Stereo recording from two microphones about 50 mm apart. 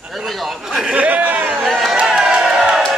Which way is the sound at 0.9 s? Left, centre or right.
Right.